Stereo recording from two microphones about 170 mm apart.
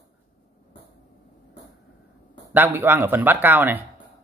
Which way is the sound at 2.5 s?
10° right (ahead or behind).